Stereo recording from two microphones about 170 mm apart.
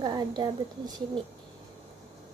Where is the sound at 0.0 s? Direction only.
25° right (ahead or behind).